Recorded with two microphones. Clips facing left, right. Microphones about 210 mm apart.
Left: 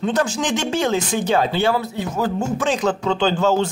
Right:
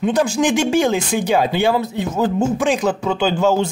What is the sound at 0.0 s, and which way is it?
Speech, 10° right (ahead or behind).